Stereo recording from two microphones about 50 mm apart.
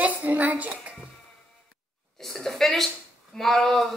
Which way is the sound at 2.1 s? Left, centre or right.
Centre.